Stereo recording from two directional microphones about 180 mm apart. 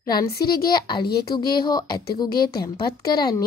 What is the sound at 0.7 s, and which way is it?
A woman's voice, 25° left (ahead or behind).